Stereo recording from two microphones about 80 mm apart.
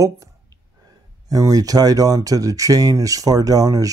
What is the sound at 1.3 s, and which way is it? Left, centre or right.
Speech, right.